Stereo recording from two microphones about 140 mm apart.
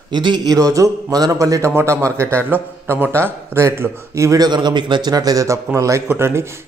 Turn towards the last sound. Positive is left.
turn(degrees=-20)  # may be behind; listen again after turning